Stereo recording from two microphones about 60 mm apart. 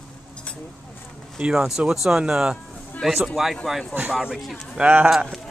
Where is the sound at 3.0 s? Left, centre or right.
Centre.